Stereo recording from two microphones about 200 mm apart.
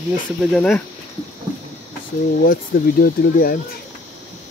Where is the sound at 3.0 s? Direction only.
50° left (ahead or behind).